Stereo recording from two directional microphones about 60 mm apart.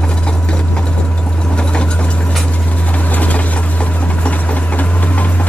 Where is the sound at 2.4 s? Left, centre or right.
Left.